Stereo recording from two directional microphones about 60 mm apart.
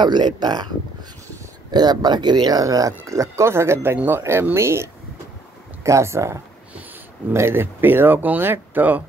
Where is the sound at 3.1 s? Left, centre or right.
Right.